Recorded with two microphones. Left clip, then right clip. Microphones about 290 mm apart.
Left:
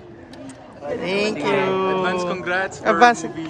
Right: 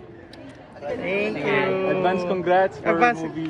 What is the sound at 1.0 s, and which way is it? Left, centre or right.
Speech, centre.